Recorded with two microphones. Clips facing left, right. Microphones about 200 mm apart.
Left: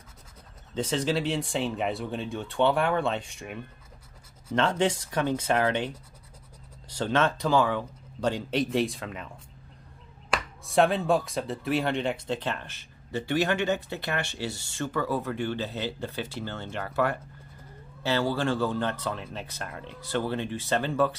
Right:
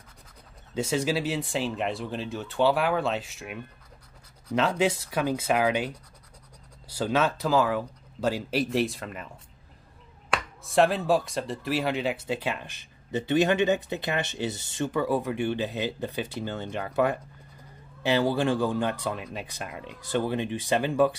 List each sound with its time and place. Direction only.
0.7 s speech: 10° right (ahead or behind)
10.3 s speech: centre (ahead or behind)